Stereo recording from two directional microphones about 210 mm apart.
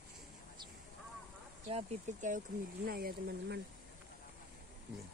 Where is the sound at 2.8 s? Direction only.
45° right (ahead or behind).